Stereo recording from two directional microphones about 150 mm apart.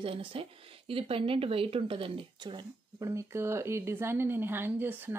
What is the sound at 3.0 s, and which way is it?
A woman's voice, 20° right (ahead or behind).